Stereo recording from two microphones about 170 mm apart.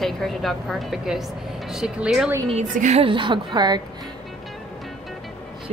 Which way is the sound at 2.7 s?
45° right (ahead or behind).